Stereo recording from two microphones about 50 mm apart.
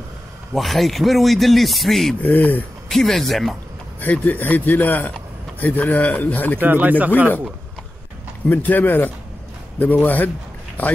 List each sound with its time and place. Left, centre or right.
0.6 s speech: centre
2.2 s speech: left
2.9 s speech: centre
4.1 s speech: left
6.6 s speech: right
8.5 s speech: left